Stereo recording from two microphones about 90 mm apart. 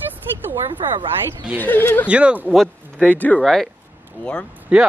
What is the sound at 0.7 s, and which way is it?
Speech, 75° right (ahead or behind).